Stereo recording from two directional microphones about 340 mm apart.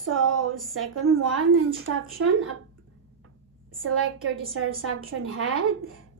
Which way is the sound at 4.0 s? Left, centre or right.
Right.